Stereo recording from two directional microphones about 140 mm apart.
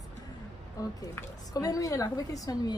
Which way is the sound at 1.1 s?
25° left (ahead or behind).